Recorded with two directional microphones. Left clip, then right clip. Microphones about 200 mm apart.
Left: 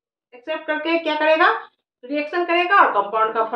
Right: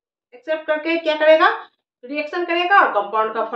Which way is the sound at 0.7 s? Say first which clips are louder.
Right 1 dB; 10° right (ahead or behind).